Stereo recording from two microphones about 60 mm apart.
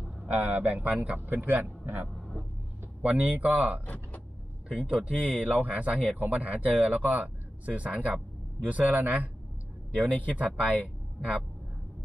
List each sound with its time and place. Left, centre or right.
0.3 s speech: right
3.0 s speech: right
3.8 s speech: left
4.7 s speech: centre